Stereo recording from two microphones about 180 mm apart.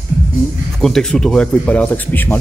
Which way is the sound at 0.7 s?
Centre (ahead or behind).